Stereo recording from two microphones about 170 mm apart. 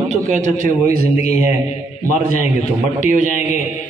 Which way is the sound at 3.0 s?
50° right (ahead or behind).